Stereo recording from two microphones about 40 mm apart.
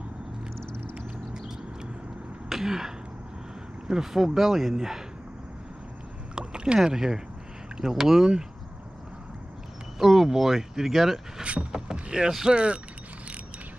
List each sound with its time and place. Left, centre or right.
0.9 s a sound: centre
2.5 s throat clearing: centre
3.8 s speech: centre
6.3 s rowboat: right
6.8 s speech: centre
9.9 s speech: centre
11.7 s vehicle: right
12.4 s speech: right